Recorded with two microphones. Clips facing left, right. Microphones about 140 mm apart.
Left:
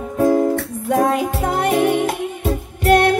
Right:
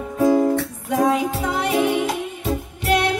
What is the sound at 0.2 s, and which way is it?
Music, 50° left (ahead or behind).